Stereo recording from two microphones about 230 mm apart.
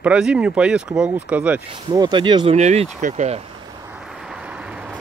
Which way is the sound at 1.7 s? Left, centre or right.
Centre.